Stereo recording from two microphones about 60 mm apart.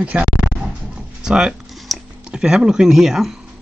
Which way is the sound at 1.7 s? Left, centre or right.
Centre.